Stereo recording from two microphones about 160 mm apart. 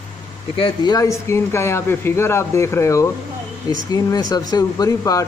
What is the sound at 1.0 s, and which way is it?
Speech, 15° left (ahead or behind).